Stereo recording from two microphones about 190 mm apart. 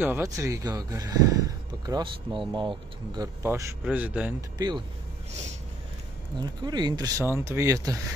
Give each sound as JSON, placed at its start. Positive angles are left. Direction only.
{"t": 0.0, "sound": "speech", "side_deg": -15}
{"t": 4.6, "sound": "speech", "side_deg": -20}
{"t": 6.6, "sound": "speech", "side_deg": -20}